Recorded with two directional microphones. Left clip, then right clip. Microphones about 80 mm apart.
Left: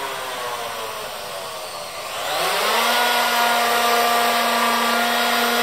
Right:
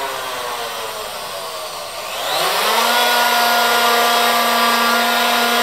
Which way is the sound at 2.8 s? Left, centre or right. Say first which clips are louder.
Right 4 dB; right.